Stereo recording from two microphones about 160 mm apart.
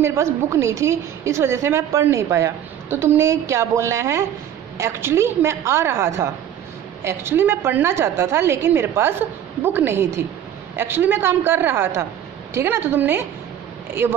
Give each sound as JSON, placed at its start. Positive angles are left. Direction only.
{"t": 0.0, "sound": "a woman's voice", "side_deg": -15}